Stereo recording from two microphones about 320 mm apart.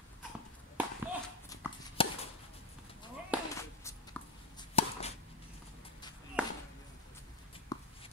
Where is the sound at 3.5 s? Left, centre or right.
Centre.